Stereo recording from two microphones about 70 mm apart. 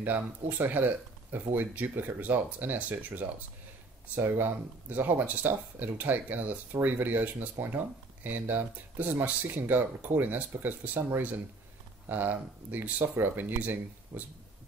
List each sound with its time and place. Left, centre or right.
0.0 s speech: right